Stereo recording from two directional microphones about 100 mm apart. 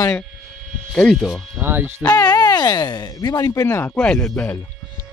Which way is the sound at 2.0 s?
40° left (ahead or behind).